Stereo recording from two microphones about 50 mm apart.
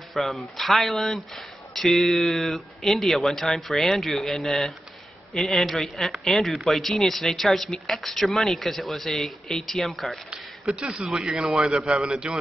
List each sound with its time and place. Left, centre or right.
0.1 s speech: centre
10.8 s a man's voice: centre